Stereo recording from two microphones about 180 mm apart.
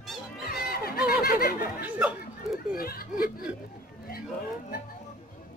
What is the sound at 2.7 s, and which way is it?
Speech, 55° left (ahead or behind).